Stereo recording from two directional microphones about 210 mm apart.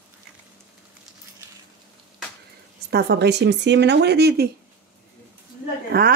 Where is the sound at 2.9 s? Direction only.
50° right (ahead or behind).